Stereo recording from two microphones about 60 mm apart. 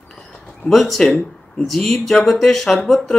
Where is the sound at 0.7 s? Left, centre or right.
Centre.